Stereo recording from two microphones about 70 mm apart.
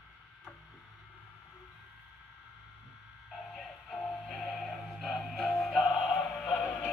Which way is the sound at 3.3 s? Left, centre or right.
Centre.